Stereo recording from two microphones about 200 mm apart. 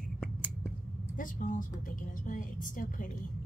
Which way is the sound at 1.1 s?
40° left (ahead or behind).